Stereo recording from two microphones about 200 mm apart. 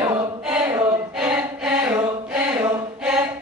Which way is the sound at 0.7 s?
15° right (ahead or behind).